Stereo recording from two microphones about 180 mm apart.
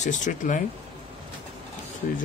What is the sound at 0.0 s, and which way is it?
Speech, 45° left (ahead or behind).